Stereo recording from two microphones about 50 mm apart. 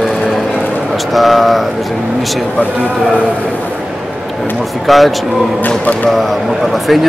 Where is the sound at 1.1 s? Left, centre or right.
Centre.